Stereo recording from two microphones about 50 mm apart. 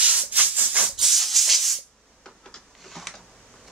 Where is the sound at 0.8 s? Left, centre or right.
Centre.